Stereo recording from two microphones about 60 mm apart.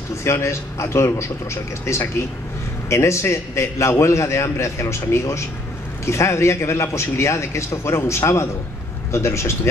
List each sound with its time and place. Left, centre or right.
0.1 s a man's voice: left